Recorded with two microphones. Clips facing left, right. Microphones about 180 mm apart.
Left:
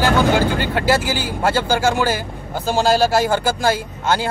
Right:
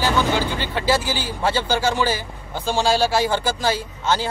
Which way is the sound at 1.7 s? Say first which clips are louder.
Left 3 dB; 50° left (ahead or behind).